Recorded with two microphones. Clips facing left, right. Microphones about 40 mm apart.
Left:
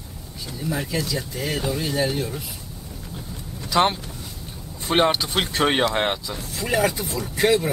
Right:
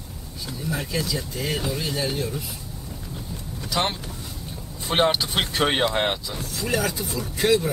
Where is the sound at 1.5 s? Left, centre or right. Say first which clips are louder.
Left 2 dB; centre.